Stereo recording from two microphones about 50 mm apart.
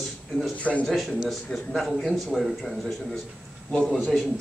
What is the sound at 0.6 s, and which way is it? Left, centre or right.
Speech, left.